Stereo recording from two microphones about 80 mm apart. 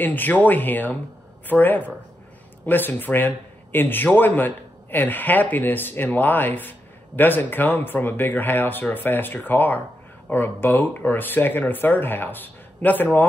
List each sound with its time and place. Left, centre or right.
0.0 s a man's voice: left